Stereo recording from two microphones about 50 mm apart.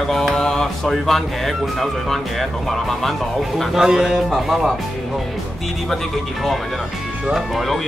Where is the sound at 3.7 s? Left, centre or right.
Centre.